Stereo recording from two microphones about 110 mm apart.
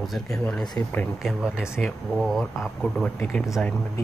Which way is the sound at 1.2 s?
5° right (ahead or behind).